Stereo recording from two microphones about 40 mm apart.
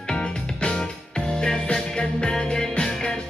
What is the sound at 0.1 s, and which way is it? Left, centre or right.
Music, left.